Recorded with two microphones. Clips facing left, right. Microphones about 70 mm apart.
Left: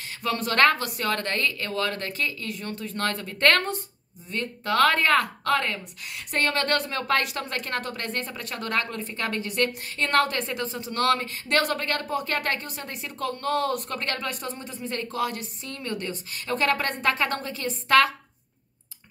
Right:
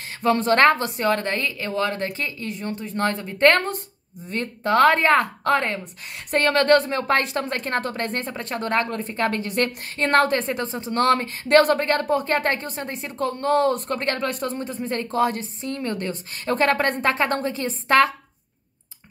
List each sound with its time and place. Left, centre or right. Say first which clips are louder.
0.2 s a woman's voice: right 5 dB; right